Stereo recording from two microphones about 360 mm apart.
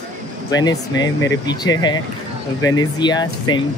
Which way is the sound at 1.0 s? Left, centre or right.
Left.